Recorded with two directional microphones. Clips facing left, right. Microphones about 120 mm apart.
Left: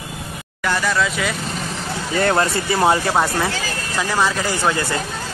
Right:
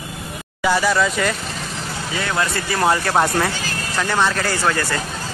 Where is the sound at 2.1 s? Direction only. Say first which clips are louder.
Left 6 dB; 50° left (ahead or behind).